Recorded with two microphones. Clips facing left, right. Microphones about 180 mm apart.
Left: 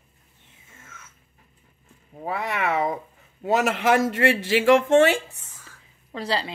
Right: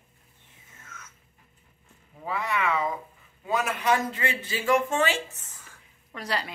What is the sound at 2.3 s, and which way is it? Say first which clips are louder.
A man's voice: left 2 dB; 70° left (ahead or behind).